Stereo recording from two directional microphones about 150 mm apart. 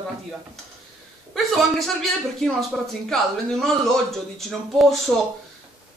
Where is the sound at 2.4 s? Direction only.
Centre (ahead or behind).